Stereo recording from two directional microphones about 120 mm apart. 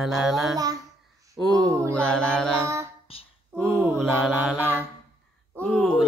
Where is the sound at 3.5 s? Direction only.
20° right (ahead or behind).